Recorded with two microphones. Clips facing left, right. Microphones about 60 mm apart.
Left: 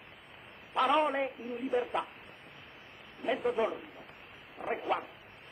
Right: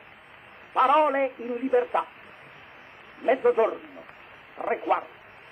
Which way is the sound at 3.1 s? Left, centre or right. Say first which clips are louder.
Right 10 dB; right.